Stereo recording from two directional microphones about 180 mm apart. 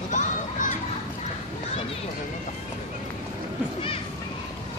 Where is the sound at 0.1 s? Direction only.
45° left (ahead or behind).